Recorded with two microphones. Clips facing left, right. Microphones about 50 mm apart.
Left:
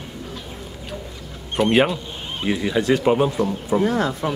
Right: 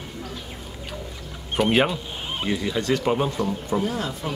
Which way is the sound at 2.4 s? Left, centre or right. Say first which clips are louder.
Left 5 dB; centre.